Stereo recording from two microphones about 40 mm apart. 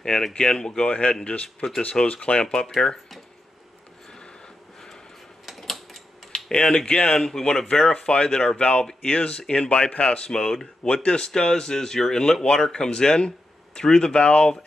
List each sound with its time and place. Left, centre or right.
0.0 s speech: left
0.8 s speech: left
2.0 s speech: centre
5.4 s typewriter: centre
6.3 s typing: left
6.9 s speech: left
7.2 s speech: centre
14.1 s speech: left